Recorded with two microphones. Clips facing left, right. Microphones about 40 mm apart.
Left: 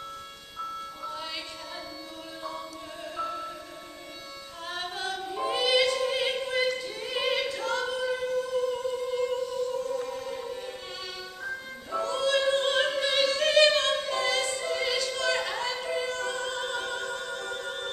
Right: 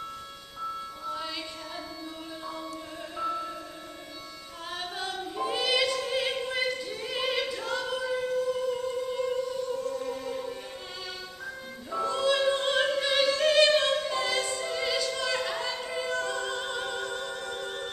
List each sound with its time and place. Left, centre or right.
1.0 s music: centre
3.2 s music: centre
4.7 s opera: centre
7.4 s singing: centre
8.7 s music: centre
12.0 s opera: centre